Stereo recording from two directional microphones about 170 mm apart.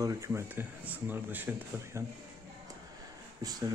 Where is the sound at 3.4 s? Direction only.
20° right (ahead or behind).